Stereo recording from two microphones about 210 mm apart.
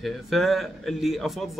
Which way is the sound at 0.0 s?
Centre (ahead or behind).